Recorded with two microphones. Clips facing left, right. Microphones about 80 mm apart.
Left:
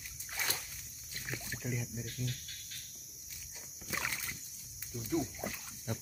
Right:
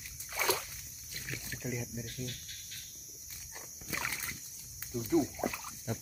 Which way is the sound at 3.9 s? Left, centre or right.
Centre.